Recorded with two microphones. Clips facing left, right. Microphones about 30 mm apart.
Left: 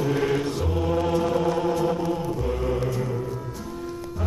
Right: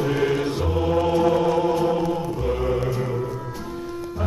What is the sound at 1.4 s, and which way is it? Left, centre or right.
Chant, right.